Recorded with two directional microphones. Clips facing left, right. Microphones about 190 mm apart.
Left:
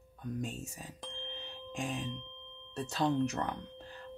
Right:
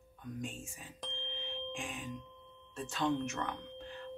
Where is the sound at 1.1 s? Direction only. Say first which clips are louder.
Right 1 dB; 40° left (ahead or behind).